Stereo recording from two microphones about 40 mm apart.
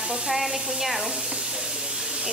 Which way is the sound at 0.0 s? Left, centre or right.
Right.